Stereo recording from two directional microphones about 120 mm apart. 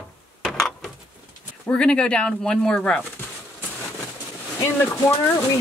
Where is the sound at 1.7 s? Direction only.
10° left (ahead or behind).